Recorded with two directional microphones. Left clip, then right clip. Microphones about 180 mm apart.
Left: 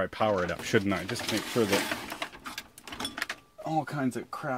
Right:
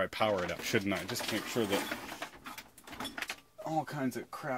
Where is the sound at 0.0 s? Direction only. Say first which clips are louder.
Left 4 dB; 20° left (ahead or behind).